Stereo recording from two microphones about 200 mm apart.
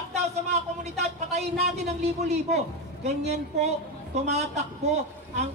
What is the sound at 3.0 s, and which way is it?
A woman's voice, 35° right (ahead or behind).